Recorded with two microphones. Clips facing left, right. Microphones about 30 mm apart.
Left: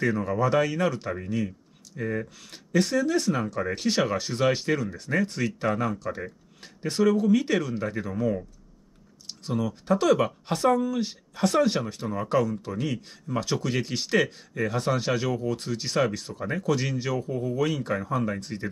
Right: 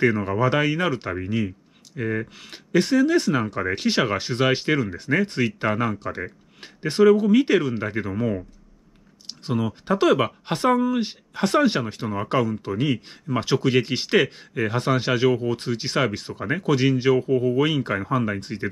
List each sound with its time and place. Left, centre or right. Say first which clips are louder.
0.0 s speech: right 4 dB; right